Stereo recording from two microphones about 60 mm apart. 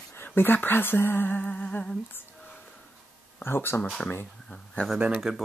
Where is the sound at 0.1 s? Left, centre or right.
Left.